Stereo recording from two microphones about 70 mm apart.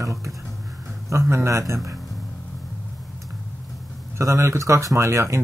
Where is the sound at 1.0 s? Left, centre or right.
Right.